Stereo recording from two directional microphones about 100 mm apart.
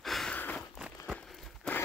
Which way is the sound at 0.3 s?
20° left (ahead or behind).